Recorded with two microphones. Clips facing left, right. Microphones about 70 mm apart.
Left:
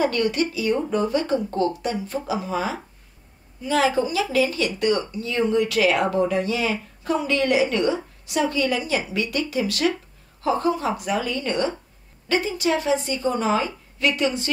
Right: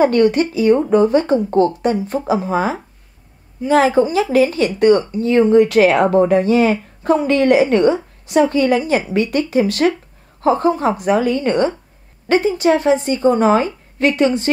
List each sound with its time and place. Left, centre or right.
0.0 s speech: right